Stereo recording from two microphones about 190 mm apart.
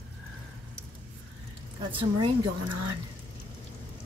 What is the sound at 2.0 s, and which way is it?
Speech, 25° right (ahead or behind).